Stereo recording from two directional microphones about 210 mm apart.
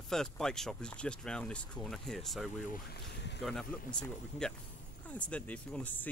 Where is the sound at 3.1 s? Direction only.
55° left (ahead or behind).